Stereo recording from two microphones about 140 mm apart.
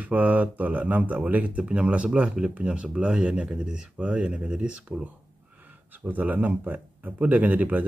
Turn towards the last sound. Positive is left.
turn(degrees=-10)  # may be behind; listen again after turning